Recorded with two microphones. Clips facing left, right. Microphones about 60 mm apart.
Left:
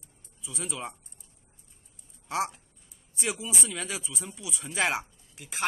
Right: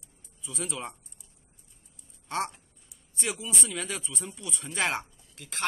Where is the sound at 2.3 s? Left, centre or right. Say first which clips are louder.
Left 1 dB; centre.